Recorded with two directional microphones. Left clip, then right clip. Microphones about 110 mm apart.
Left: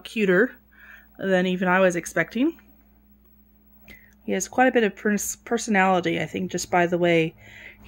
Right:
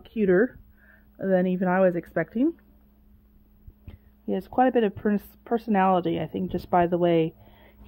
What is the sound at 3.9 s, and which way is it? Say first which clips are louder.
Speech: left 2 dB; 20° left (ahead or behind).